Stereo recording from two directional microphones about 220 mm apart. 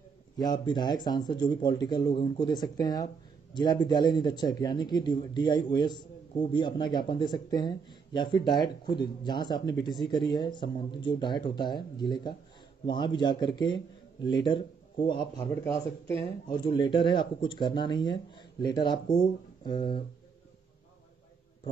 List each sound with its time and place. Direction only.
0.4 s speech: 20° left (ahead or behind)